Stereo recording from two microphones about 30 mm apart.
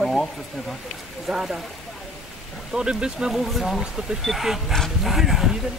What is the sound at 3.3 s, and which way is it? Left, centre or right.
Speech, centre.